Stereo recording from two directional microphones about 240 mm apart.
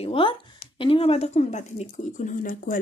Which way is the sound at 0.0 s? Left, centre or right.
Left.